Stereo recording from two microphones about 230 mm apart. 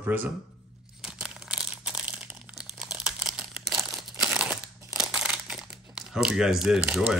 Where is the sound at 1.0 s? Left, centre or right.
Centre.